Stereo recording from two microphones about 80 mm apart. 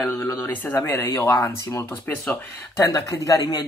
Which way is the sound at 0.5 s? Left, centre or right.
Left.